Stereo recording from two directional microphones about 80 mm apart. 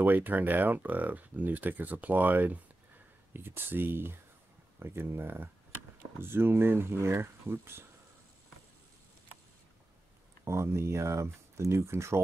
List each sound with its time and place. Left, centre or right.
0.0 s speech: right
10.4 s speech: right